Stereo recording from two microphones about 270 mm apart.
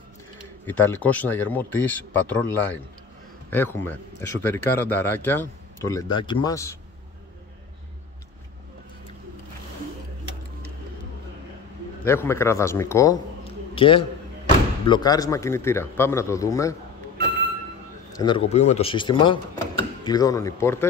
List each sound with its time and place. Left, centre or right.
0.7 s speech: centre
12.0 s a man's voice: centre
18.1 s speech: centre